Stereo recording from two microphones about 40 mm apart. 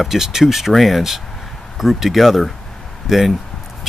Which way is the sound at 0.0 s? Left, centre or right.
Centre.